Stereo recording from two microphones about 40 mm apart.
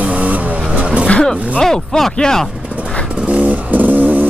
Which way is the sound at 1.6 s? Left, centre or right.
Centre.